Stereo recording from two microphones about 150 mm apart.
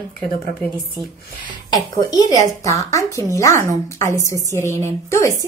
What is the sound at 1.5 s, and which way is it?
Speech, 25° left (ahead or behind).